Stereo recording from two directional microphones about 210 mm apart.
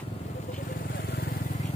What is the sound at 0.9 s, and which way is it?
Vehicle, 50° left (ahead or behind).